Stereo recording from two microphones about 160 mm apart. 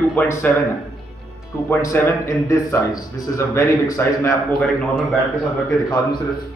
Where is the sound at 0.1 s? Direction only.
10° left (ahead or behind).